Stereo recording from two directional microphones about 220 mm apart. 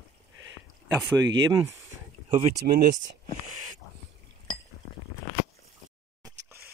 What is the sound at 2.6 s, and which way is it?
Speech, 35° right (ahead or behind).